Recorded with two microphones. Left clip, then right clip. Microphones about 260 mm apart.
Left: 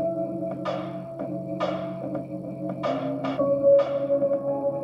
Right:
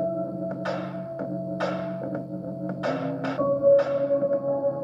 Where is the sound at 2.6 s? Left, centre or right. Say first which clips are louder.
Left 1 dB; right.